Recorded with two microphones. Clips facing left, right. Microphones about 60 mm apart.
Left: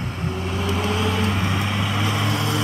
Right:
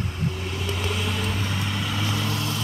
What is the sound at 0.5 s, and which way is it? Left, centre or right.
Vehicle, left.